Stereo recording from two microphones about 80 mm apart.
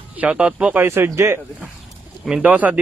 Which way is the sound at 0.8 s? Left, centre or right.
Right.